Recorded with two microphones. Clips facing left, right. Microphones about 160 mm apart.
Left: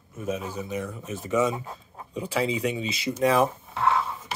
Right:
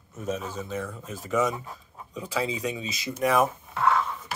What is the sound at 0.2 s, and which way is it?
Speech, 15° left (ahead or behind).